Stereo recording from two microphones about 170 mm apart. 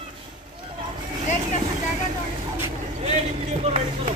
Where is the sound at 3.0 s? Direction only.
40° right (ahead or behind).